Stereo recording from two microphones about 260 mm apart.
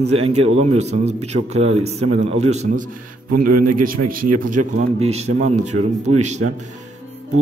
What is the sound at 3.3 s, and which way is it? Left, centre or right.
Speech, right.